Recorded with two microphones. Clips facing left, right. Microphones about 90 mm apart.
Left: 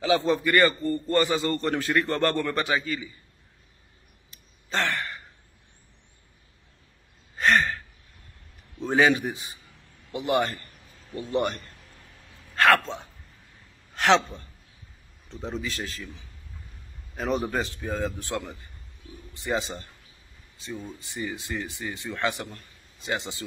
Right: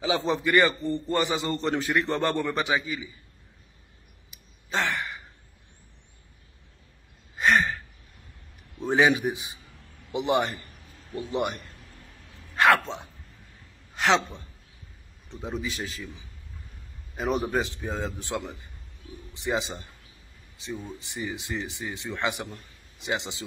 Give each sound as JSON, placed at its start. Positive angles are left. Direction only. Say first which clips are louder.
{"t": 0.0, "sound": "a man's voice", "louder": "left 3 dB", "side_deg": -20}
{"t": 4.3, "sound": "sigh", "louder": "even", "side_deg": -15}
{"t": 7.3, "sound": "gasp", "louder": "even", "side_deg": -15}
{"t": 8.7, "sound": "a man's voice", "louder": "even", "side_deg": -15}
{"t": 13.9, "sound": "speech", "louder": "left 2 dB", "side_deg": 0}
{"t": 15.2, "sound": "a man's voice", "louder": "even", "side_deg": -15}
{"t": 17.3, "sound": "a man's voice", "louder": "right 1 dB", "side_deg": -15}